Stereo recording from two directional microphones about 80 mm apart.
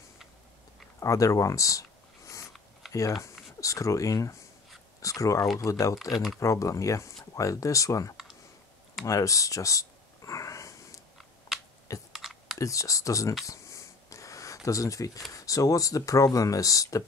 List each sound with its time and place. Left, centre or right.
0.9 s a sound: left
2.8 s typing: centre
3.2 s speech: left
6.1 s speech: centre
6.4 s speech: left
9.0 s a sound: left
11.1 s biting: centre
12.1 s computer keyboard: centre
12.5 s speech: left
13.5 s a sound: left
15.3 s speech: left